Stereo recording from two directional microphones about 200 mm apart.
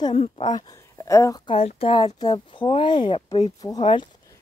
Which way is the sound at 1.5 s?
30° left (ahead or behind).